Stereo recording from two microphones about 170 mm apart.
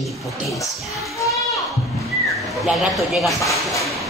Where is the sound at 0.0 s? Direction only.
Centre (ahead or behind).